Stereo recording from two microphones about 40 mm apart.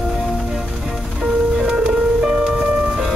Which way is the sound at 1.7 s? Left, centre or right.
Right.